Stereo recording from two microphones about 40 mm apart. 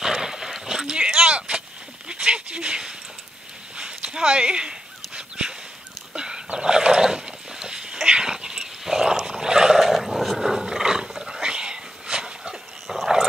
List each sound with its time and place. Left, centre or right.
0.0 s a sound: centre
8.1 s dog: centre
9.8 s wild animals: centre; by 12.5 s right
12.8 s dog: centre